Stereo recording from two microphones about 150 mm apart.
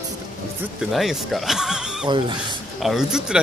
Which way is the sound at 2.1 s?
30° right (ahead or behind).